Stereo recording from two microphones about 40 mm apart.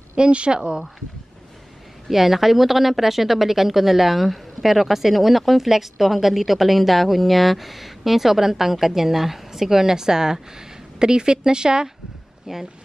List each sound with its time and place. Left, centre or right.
0.1 s speech: right
2.0 s speech: centre